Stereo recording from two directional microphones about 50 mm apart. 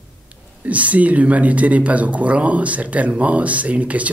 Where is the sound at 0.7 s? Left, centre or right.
Right.